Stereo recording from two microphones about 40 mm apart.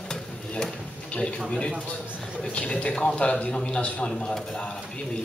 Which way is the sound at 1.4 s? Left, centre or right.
Left.